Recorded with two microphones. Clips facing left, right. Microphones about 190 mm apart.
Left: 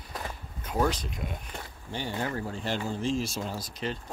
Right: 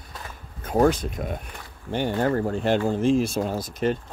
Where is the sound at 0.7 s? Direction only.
50° right (ahead or behind).